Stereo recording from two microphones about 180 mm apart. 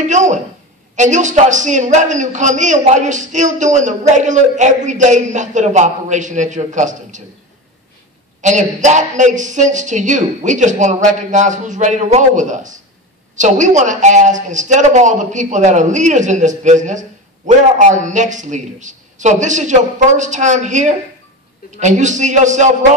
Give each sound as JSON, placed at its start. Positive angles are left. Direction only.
{"t": 0.1, "sound": "a man's voice", "side_deg": -40}
{"t": 8.4, "sound": "a man's voice", "side_deg": -40}